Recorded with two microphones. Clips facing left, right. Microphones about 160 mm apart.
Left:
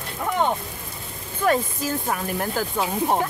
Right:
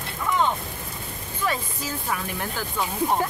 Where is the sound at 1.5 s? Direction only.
45° left (ahead or behind).